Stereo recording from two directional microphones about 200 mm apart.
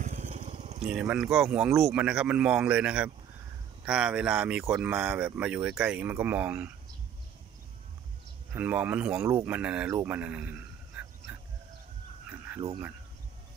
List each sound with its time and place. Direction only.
0.0 s vehicle: 35° right (ahead or behind)
0.8 s speech: 5° right (ahead or behind)
8.5 s speech: 10° right (ahead or behind)
10.9 s dog: 5° right (ahead or behind)
12.3 s a sound: 10° right (ahead or behind)